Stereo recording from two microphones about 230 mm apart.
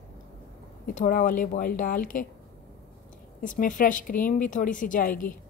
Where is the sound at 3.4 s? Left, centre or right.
Left.